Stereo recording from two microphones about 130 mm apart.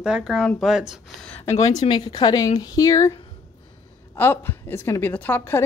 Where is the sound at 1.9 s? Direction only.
35° left (ahead or behind).